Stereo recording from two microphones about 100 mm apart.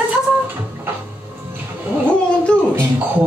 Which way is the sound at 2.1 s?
10° left (ahead or behind).